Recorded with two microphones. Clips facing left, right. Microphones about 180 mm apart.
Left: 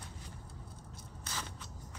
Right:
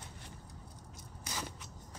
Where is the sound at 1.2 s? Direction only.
10° right (ahead or behind).